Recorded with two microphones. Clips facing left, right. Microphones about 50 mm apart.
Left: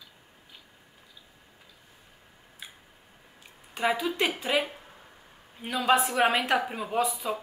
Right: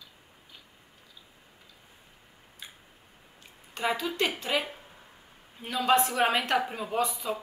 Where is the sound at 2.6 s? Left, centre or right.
Centre.